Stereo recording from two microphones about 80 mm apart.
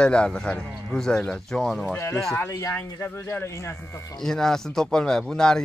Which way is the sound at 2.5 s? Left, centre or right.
Left.